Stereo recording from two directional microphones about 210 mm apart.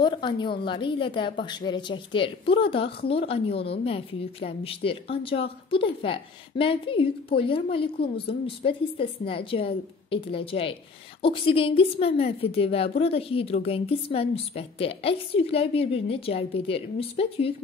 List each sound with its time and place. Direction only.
0.0 s a woman's voice: 20° left (ahead or behind)